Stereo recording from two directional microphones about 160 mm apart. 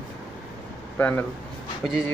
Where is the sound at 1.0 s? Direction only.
10° left (ahead or behind).